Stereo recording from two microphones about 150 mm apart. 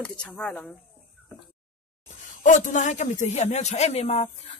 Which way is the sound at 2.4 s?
55° left (ahead or behind).